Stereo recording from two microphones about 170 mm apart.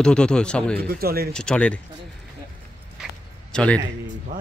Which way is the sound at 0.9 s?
65° right (ahead or behind).